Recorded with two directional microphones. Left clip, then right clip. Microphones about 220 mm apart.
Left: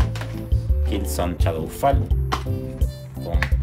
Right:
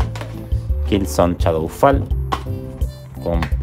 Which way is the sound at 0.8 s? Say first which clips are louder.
Right 9 dB; 30° right (ahead or behind).